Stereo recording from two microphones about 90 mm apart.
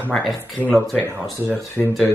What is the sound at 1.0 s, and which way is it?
Speech, 25° left (ahead or behind).